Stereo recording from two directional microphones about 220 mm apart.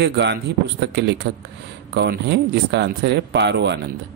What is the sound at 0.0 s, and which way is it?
Speech, 50° right (ahead or behind).